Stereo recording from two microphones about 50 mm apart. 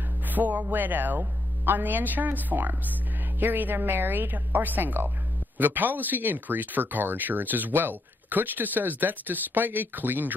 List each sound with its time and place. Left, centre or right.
0.3 s speech: right